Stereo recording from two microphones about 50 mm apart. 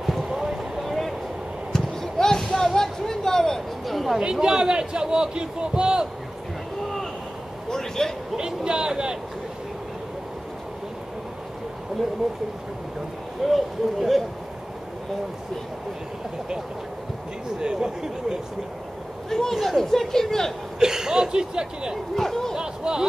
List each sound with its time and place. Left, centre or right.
0.0 s a sound: centre
4.2 s a man's voice: centre
7.7 s a sound: centre
8.4 s a man's voice: centre
13.5 s speech: centre
17.6 s a man's voice: centre
19.2 s speech: centre
20.8 s a man's voice: centre
22.1 s speech: centre
22.6 s a sound: centre